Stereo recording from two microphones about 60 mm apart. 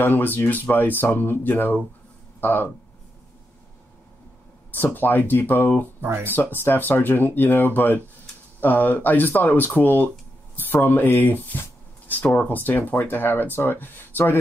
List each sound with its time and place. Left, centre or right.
0.0 s speech: left
4.6 s speech: left